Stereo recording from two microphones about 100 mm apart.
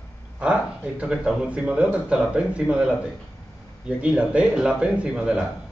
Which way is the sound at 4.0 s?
10° right (ahead or behind).